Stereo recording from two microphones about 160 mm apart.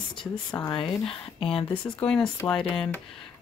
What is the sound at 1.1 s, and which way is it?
Speech, 35° left (ahead or behind).